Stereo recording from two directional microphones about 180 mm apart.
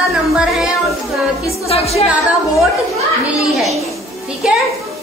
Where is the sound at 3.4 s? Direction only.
Centre (ahead or behind).